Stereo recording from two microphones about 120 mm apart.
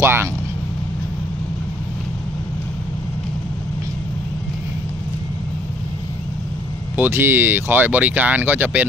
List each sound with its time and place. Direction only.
0.0 s speech: 20° right (ahead or behind)
7.0 s speech: 20° right (ahead or behind)